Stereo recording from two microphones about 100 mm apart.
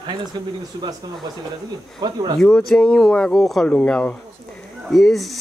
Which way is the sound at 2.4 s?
5° left (ahead or behind).